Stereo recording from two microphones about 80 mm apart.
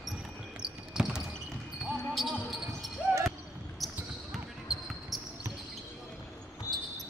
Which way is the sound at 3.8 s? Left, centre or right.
Centre.